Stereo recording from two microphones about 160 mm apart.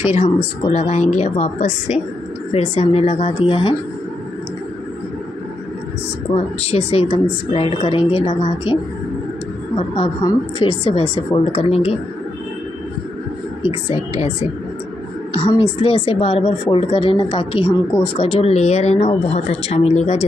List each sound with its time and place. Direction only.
0.1 s a woman's voice: 45° left (ahead or behind)
6.3 s a woman's voice: 40° left (ahead or behind)
9.8 s a woman's voice: 35° left (ahead or behind)
13.6 s a woman's voice: 40° left (ahead or behind)
15.3 s a woman's voice: 35° left (ahead or behind)